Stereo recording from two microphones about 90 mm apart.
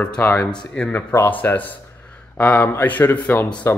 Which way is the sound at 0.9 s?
25° left (ahead or behind).